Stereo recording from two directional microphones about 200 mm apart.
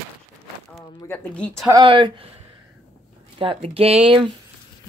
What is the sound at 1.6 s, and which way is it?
Speech, 25° right (ahead or behind).